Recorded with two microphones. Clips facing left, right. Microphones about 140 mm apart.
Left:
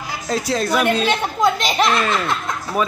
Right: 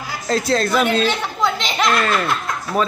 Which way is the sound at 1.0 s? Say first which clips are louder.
Left 2 dB; 45° left (ahead or behind).